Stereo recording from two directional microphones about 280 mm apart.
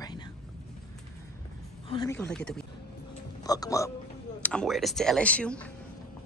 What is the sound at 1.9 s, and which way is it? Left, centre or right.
Speech, centre.